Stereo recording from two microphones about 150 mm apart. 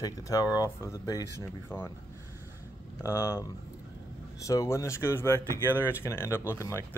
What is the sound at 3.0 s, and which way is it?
Speech, 20° left (ahead or behind).